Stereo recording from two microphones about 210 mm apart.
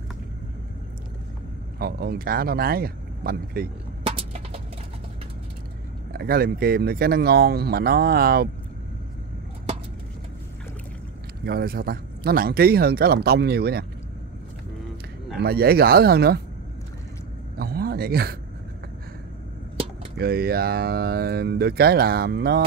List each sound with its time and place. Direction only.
1.8 s speech: 45° right (ahead or behind)
4.0 s a sound: 30° right (ahead or behind)
6.1 s speech: 45° right (ahead or behind)
11.4 s speech: 45° right (ahead or behind)
15.3 s speech: 50° right (ahead or behind)
17.6 s a sound: 45° right (ahead or behind)
20.2 s speech: 50° right (ahead or behind)